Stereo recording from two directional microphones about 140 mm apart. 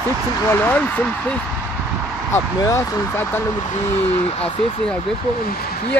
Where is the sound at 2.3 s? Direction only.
20° left (ahead or behind).